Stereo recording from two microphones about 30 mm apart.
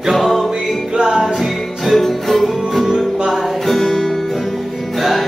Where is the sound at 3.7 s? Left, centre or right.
Centre.